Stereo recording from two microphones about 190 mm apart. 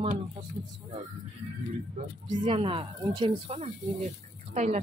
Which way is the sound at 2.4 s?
25° right (ahead or behind).